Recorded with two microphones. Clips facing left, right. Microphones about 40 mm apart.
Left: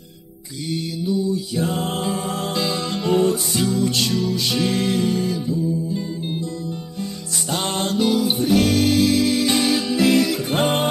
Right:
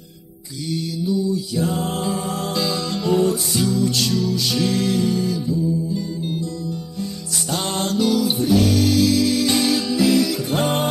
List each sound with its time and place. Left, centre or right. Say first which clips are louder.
0.7 s mantra: right 1 dB; left
7.4 s music: even; left
8.5 s music: even; left
9.9 s music: left 1 dB; left